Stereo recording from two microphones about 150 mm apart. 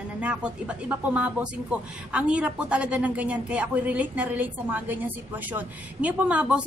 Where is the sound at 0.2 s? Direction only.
5° right (ahead or behind).